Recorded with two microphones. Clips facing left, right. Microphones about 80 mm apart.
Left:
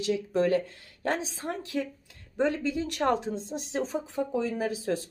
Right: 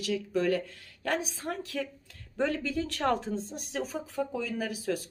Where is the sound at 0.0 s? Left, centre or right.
Left.